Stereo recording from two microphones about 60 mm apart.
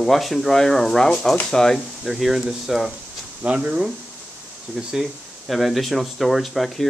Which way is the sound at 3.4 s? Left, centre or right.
Right.